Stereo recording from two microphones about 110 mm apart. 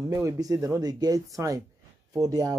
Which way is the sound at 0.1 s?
30° right (ahead or behind).